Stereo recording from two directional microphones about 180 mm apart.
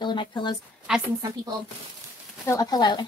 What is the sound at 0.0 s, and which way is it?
Speech, 25° left (ahead or behind).